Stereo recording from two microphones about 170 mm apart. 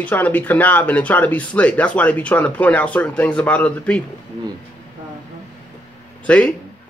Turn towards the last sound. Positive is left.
turn(degrees=5)  # may be behind; listen again after turning